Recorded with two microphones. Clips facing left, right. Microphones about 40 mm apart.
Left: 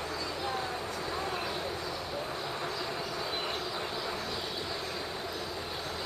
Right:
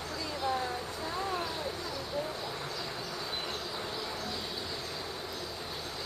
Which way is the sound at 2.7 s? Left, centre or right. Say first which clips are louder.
Left 3 dB; centre.